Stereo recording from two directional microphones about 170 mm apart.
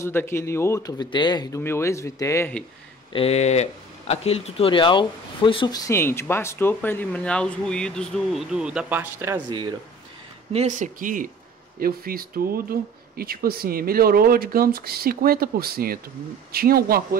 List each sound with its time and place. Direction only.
0.0 s speech: 15° left (ahead or behind)
3.1 s speech: 35° left (ahead or behind)
5.9 s speech: 15° left (ahead or behind); by 9.4 s 15° right (ahead or behind)
9.5 s speech: 25° right (ahead or behind)
10.5 s speech: 45° right (ahead or behind); by 17.2 s 60° right (ahead or behind)